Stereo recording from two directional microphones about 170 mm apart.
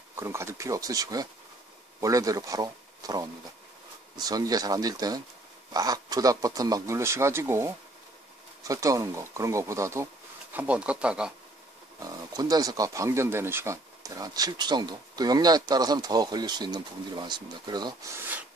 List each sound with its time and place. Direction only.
0.1 s speech: 15° right (ahead or behind)
12.4 s speech: 20° right (ahead or behind)